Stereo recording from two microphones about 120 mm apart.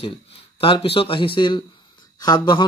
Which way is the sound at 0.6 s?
45° left (ahead or behind).